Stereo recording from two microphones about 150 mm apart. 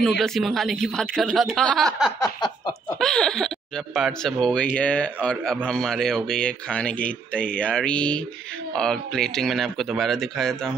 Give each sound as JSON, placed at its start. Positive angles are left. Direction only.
{"t": 0.0, "sound": "speech", "side_deg": 5}
{"t": 2.1, "sound": "a sound", "side_deg": 25}
{"t": 3.0, "sound": "speech", "side_deg": 5}